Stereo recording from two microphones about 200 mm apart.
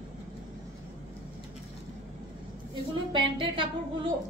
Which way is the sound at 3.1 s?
25° right (ahead or behind).